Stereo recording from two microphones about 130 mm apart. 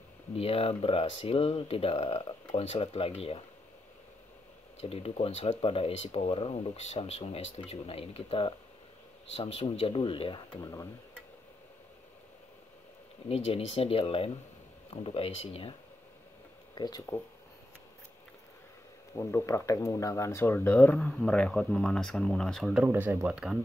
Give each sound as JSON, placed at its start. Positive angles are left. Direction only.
{"t": 0.4, "sound": "speech", "side_deg": 50}
{"t": 4.7, "sound": "speech", "side_deg": 50}
{"t": 10.6, "sound": "speech", "side_deg": 25}
{"t": 13.3, "sound": "speech", "side_deg": 55}
{"t": 16.7, "sound": "speech", "side_deg": 30}
{"t": 19.1, "sound": "speech", "side_deg": 20}
{"t": 22.8, "sound": "speech", "side_deg": -15}